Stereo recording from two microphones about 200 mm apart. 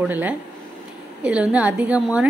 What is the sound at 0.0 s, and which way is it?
A woman's voice, 10° right (ahead or behind).